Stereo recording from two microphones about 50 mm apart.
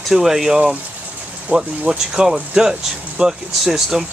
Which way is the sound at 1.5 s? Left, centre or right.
Right.